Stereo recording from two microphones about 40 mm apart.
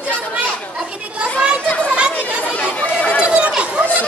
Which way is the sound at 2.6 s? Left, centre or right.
Left.